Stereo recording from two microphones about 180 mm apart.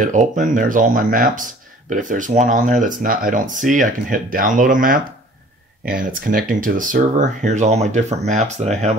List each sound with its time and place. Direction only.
0.0 s speech: 45° right (ahead or behind)